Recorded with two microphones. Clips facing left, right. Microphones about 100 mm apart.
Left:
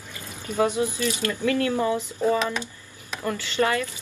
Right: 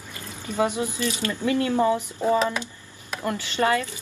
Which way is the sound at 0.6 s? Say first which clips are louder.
Left 1 dB; 15° right (ahead or behind).